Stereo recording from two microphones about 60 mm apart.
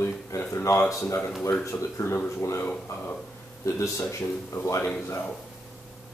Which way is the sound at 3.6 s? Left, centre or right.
Left.